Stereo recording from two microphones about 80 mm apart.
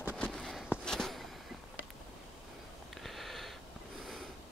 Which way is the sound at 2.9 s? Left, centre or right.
Centre.